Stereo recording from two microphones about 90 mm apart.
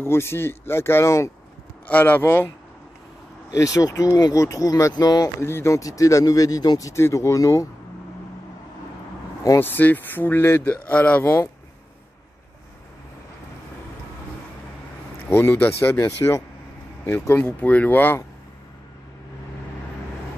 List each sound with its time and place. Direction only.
0.0 s speech: 30° left (ahead or behind)
1.9 s speech: 15° left (ahead or behind)
3.5 s speech: 40° left (ahead or behind)
5.4 s speech: 30° left (ahead or behind); by 6.9 s 45° left (ahead or behind)
6.9 s speech: 30° left (ahead or behind)
9.6 s speech: 20° left (ahead or behind)
15.2 s speech: 25° left (ahead or behind)
16.0 s speech: 35° left (ahead or behind)
17.4 s speech: 15° left (ahead or behind)